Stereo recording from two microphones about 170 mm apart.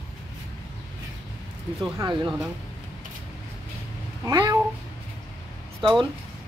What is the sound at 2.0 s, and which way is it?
Speech, 25° right (ahead or behind).